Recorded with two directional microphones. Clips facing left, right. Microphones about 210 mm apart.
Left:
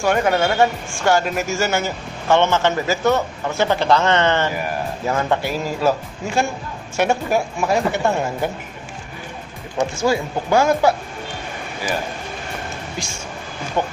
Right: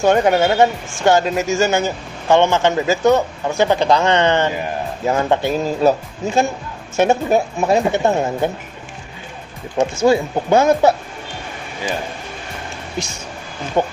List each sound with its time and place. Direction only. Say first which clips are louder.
0.0 s speech: right 4 dB; 20° right (ahead or behind)
9.8 s speech: right 5 dB; 20° right (ahead or behind)
13.8 s speech: right 4 dB; 15° right (ahead or behind)